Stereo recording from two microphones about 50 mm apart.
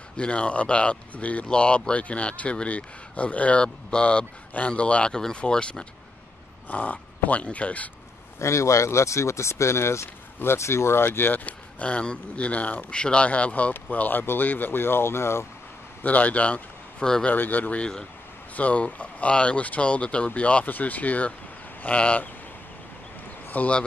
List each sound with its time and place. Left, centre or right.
0.2 s speech: left
6.7 s speech: left
8.4 s speech: left
11.1 s speech: left
16.0 s a man's voice: left
23.5 s speech: left